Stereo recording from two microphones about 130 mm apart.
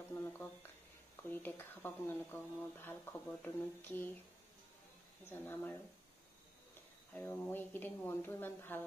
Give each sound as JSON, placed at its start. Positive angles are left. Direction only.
{"t": 0.1, "sound": "a sound", "side_deg": 15}
{"t": 1.3, "sound": "speech", "side_deg": 15}
{"t": 5.3, "sound": "speech", "side_deg": 15}
{"t": 7.2, "sound": "speech", "side_deg": 15}